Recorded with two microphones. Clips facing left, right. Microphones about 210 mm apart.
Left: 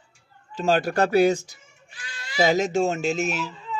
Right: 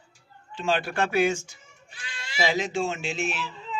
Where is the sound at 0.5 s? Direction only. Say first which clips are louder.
Left 5 dB; 40° left (ahead or behind).